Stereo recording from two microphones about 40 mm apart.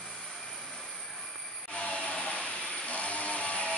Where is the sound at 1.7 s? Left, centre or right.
Left.